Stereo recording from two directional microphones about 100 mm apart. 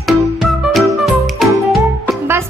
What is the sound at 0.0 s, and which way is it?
Music, centre (ahead or behind).